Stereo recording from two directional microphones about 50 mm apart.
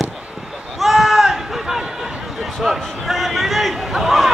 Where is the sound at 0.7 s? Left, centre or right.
Centre.